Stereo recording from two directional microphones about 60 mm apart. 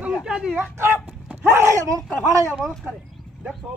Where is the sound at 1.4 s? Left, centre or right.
Right.